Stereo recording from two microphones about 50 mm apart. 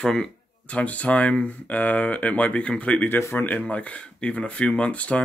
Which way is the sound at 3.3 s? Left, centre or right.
Left.